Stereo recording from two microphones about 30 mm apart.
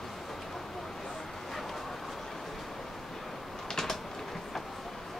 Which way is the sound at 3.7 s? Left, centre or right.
Centre.